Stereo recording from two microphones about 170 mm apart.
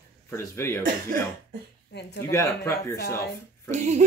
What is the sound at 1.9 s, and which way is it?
Speech, 75° left (ahead or behind).